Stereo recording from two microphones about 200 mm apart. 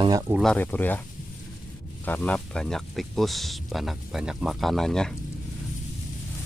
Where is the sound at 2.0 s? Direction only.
10° left (ahead or behind).